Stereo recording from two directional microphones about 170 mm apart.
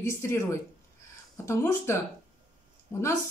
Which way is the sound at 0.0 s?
15° left (ahead or behind).